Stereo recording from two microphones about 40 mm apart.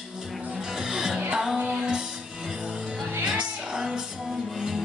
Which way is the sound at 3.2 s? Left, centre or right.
Centre.